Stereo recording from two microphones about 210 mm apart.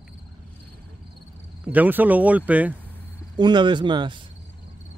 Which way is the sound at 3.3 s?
20° right (ahead or behind).